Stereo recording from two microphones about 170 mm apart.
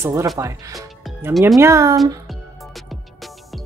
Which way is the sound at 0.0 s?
15° right (ahead or behind).